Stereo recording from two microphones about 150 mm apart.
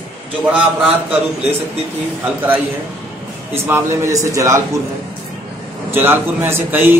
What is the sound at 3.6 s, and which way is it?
Speech, 20° right (ahead or behind).